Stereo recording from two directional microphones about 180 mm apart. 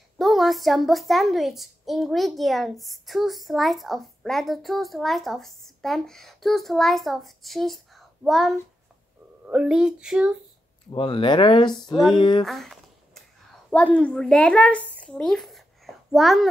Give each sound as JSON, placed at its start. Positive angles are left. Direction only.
{"t": 0.2, "sound": "a child's voice", "side_deg": 0}
{"t": 10.9, "sound": "speech", "side_deg": 30}
{"t": 12.4, "sound": "a sound", "side_deg": 0}
{"t": 13.7, "sound": "a woman's voice", "side_deg": 5}